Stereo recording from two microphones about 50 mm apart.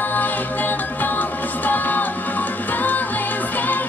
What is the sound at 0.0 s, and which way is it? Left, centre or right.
Music, left.